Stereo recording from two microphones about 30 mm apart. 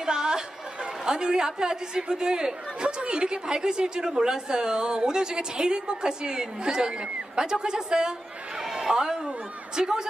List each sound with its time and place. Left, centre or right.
0.0 s speech: right